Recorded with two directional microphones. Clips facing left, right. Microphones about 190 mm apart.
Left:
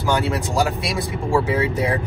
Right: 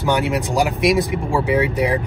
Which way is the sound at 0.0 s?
15° right (ahead or behind).